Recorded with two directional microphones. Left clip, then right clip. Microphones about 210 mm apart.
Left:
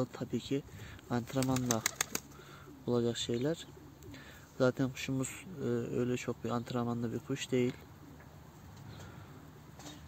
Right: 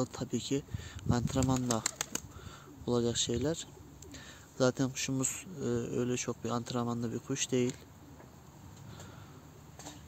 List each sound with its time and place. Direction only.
0.0 s speech: 5° right (ahead or behind)
1.4 s speech: 30° left (ahead or behind)
2.8 s speech: 5° right (ahead or behind)